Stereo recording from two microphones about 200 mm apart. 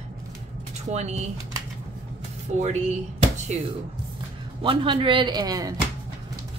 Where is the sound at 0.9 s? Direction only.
35° right (ahead or behind).